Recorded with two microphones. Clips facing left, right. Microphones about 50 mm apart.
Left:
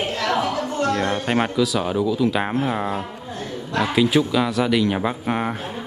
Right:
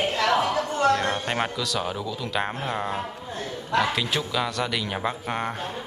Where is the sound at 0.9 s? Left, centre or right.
Centre.